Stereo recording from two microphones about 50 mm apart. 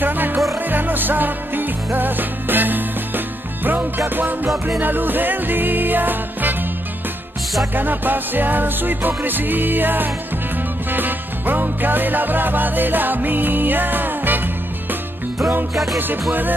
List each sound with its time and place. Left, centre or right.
0.0 s music: right
4.1 s music: right
7.7 s music: right
15.7 s music: centre
16.0 s music: right